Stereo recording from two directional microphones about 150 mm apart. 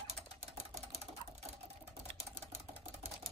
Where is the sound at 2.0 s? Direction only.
45° right (ahead or behind).